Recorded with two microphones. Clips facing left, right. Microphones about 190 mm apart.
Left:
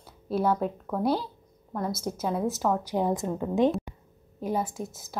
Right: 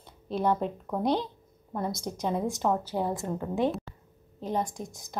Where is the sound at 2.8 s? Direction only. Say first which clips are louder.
Left 3 dB; 15° left (ahead or behind).